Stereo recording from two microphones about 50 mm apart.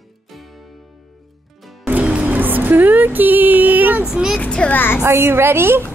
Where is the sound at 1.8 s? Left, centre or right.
Right.